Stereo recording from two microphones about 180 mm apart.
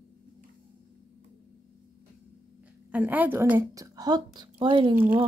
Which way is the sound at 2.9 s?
10° right (ahead or behind).